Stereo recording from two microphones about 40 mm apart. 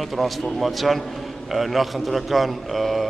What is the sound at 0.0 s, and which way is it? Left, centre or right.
A man's voice, centre.